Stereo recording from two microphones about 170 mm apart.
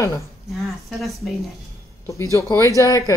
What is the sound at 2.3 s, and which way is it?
Speech, 20° left (ahead or behind).